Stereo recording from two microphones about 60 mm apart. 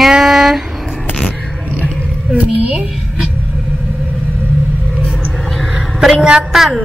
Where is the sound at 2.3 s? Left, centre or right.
Centre.